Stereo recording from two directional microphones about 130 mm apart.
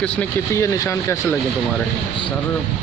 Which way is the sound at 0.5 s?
25° left (ahead or behind).